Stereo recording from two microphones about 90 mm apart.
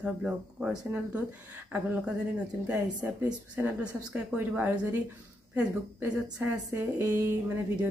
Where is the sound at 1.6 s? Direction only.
10° right (ahead or behind); by 7.2 s 30° right (ahead or behind).